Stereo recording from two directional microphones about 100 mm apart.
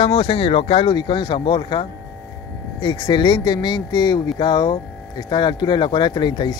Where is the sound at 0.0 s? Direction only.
55° left (ahead or behind).